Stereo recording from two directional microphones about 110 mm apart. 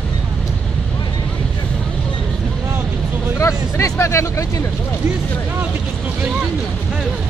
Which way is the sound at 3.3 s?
25° left (ahead or behind).